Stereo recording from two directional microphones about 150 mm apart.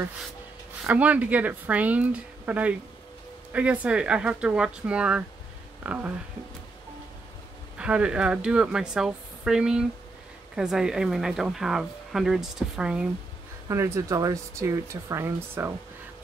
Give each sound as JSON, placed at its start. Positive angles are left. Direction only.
{"t": 0.8, "sound": "speech", "side_deg": -10}
{"t": 7.7, "sound": "speech", "side_deg": -5}
{"t": 13.7, "sound": "speech", "side_deg": -20}